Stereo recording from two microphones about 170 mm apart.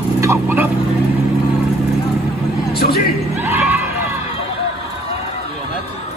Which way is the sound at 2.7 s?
65° left (ahead or behind).